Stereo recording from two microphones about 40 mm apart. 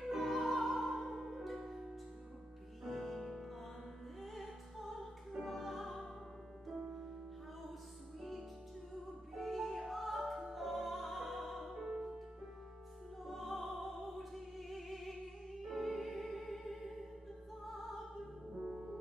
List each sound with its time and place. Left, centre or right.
0.0 s music: centre
4.2 s opera: centre
5.4 s music: centre
8.2 s music: centre
9.3 s opera: centre
13.2 s music: centre
18.6 s music: right